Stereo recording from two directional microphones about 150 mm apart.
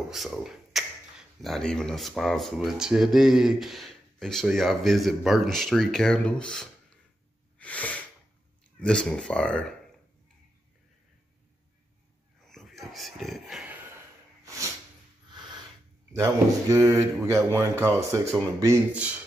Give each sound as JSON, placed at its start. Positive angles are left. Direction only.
{"t": 0.1, "sound": "speech", "side_deg": 0}
{"t": 7.5, "sound": "sneeze", "side_deg": 10}
{"t": 8.7, "sound": "speech", "side_deg": 5}
{"t": 12.4, "sound": "a sound", "side_deg": 0}
{"t": 14.4, "sound": "sneeze", "side_deg": -20}
{"t": 15.2, "sound": "a sound", "side_deg": -30}
{"t": 16.1, "sound": "speech", "side_deg": -20}